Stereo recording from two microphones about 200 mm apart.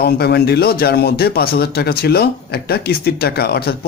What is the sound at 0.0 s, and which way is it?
Speech, 50° left (ahead or behind).